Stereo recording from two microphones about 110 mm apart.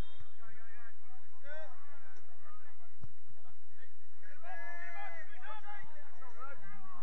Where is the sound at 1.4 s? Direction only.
30° right (ahead or behind).